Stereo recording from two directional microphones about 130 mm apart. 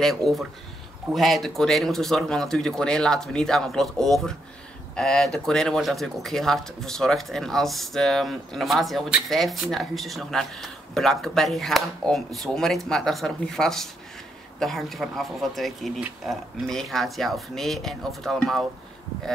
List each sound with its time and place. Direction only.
0.0 s speech: centre (ahead or behind)